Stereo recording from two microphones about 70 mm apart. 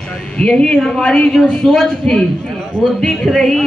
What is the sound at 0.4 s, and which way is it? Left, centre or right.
Speech, centre.